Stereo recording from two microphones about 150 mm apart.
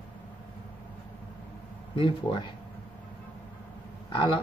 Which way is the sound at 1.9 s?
35° left (ahead or behind).